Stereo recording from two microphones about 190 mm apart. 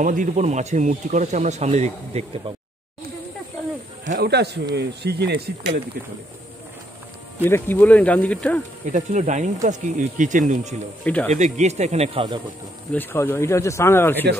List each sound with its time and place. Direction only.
0.0 s speech: 45° right (ahead or behind)
4.0 s speech: 40° right (ahead or behind)
4.3 s speech: 60° right (ahead or behind)
7.4 s speech: 10° left (ahead or behind)
8.9 s speech: 40° right (ahead or behind)
12.9 s speech: 10° left (ahead or behind)